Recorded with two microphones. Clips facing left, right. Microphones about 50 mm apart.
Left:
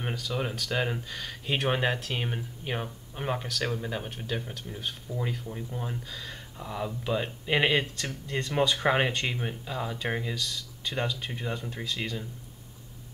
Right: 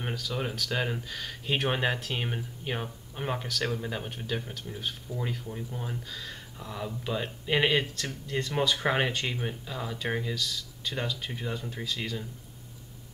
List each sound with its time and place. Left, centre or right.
0.0 s speech: centre